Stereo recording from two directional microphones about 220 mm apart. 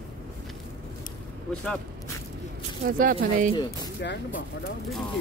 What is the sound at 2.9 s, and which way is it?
Speech, 40° right (ahead or behind).